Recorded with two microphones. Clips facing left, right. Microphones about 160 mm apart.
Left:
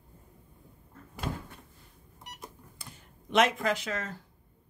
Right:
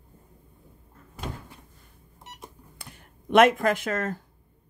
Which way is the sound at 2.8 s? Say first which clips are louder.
Right 4 dB; 60° right (ahead or behind).